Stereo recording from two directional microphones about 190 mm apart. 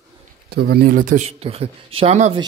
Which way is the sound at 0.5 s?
55° right (ahead or behind).